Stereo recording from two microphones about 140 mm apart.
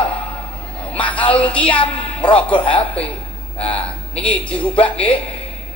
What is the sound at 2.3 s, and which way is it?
Speech, 10° left (ahead or behind).